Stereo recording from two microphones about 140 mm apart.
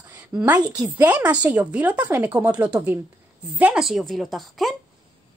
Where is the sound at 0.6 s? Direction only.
30° right (ahead or behind).